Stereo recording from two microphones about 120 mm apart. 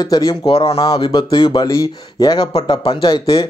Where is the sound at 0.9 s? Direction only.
40° left (ahead or behind).